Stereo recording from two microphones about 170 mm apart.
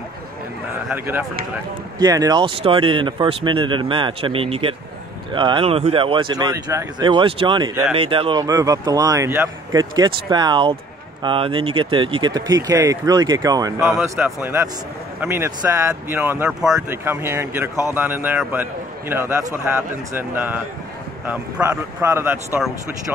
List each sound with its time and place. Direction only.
0.8 s speech: 10° right (ahead or behind)
2.0 s speech: 25° right (ahead or behind)
21.6 s speech: 15° right (ahead or behind)